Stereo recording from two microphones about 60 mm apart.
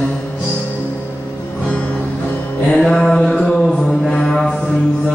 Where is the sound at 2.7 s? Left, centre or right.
Centre.